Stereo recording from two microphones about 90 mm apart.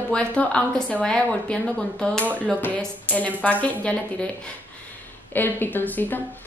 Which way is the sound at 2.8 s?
15° left (ahead or behind).